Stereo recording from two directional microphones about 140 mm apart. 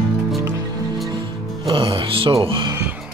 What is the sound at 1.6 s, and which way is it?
Music, 40° right (ahead or behind).